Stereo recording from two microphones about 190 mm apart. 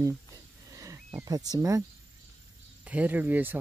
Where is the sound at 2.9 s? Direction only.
10° right (ahead or behind).